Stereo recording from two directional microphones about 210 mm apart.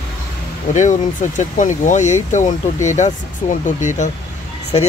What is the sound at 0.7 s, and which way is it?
Speech, 35° left (ahead or behind).